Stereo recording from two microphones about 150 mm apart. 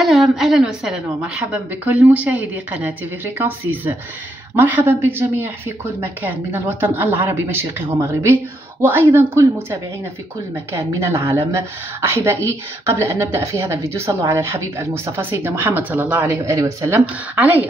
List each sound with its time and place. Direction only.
0.0 s a woman's voice: centre (ahead or behind)